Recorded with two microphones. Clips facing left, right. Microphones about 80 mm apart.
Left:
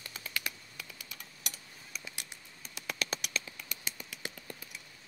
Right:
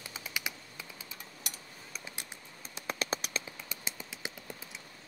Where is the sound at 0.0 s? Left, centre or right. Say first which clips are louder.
Right 1 dB; centre.